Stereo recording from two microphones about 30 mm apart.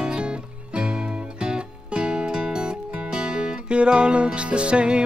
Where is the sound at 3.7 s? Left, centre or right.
Right.